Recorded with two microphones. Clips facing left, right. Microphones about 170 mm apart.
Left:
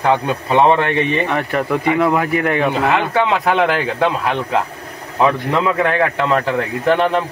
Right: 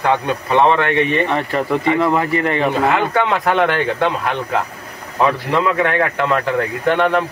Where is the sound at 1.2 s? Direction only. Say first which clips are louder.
Even; centre (ahead or behind).